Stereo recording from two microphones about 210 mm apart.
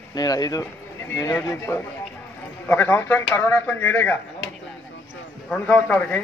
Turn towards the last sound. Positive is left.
turn(degrees=5)  # may be behind; listen again after turning